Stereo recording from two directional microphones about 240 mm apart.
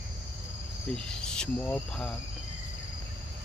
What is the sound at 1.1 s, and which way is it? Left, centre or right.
Speech, centre.